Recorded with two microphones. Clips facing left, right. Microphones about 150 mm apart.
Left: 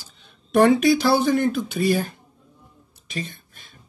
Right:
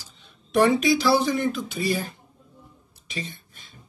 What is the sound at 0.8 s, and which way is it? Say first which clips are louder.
Speech: left 3 dB; 50° left (ahead or behind).